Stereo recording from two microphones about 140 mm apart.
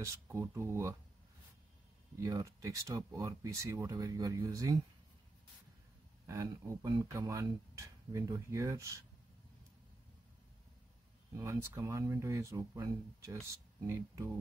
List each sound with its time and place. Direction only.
0.0 s speech: 20° right (ahead or behind)
2.1 s speech: 20° right (ahead or behind)
6.2 s speech: 20° right (ahead or behind)
11.3 s speech: 20° right (ahead or behind)